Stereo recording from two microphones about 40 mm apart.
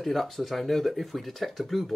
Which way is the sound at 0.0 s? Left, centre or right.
Centre.